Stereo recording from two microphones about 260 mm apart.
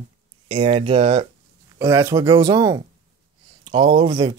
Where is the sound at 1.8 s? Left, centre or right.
Centre.